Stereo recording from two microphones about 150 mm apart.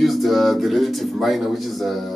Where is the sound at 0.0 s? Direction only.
Centre (ahead or behind).